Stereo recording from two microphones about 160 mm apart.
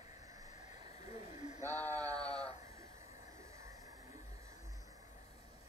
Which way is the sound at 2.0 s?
25° right (ahead or behind).